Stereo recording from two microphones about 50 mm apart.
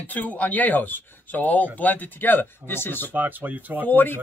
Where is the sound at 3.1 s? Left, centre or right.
Right.